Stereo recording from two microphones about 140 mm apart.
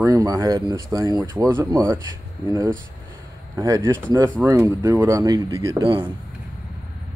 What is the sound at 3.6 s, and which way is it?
Speech, 25° right (ahead or behind).